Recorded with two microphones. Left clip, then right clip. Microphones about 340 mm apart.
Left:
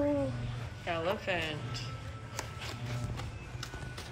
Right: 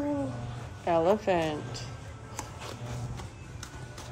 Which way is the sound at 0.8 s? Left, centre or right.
Right.